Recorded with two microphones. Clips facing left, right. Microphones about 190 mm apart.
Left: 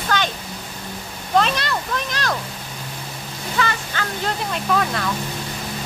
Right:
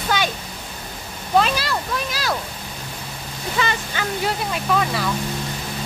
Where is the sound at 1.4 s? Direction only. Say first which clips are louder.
Even; 5° right (ahead or behind).